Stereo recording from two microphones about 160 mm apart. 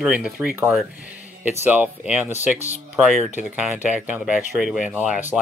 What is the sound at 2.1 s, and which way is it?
Speech, 10° right (ahead or behind).